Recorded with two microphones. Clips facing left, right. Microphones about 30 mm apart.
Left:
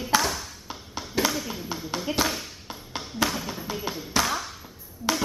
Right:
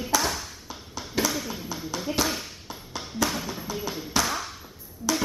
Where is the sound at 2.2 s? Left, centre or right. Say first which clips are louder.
Left 1 dB; centre.